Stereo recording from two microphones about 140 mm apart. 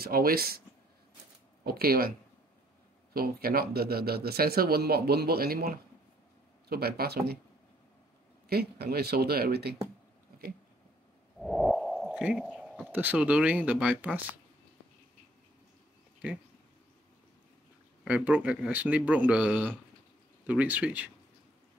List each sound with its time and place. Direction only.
0.0 s speech: 90° right
1.7 s speech: 90° right
9.1 s speech: 90° right
11.3 s a sound: centre (ahead or behind)
12.9 s speech: 10° right (ahead or behind)
18.0 s speech: 10° right (ahead or behind)